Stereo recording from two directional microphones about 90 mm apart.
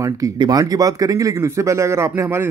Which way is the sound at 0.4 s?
45° right (ahead or behind).